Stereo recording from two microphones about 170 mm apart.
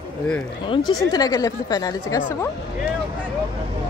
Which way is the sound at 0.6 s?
30° left (ahead or behind).